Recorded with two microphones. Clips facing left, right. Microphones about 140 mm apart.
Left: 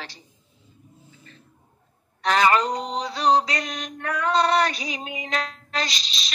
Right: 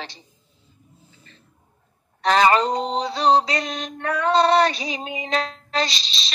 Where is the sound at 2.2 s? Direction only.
30° right (ahead or behind).